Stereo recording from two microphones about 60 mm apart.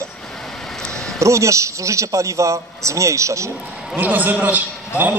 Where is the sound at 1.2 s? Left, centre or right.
Right.